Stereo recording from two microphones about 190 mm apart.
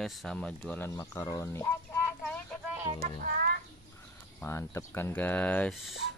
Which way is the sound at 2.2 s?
5° left (ahead or behind).